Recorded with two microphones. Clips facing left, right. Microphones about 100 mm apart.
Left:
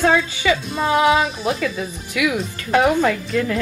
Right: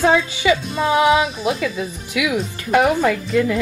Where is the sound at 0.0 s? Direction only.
15° right (ahead or behind).